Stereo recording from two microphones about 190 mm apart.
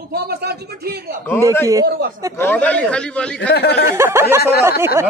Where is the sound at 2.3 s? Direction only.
10° left (ahead or behind).